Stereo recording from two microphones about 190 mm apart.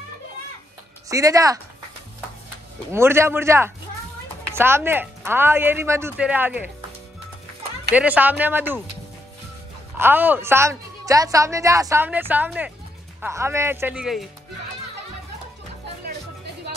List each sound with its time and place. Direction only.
1.0 s speech: 20° right (ahead or behind)
2.9 s a woman's voice: 15° right (ahead or behind)
7.9 s a woman's voice: 5° right (ahead or behind)
9.9 s a woman's voice: 10° right (ahead or behind)